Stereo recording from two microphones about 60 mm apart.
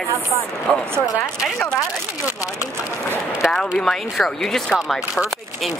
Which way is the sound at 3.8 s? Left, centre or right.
Centre.